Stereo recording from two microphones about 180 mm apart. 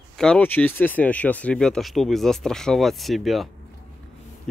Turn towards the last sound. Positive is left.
turn(degrees=0)  # may be behind; listen again after turning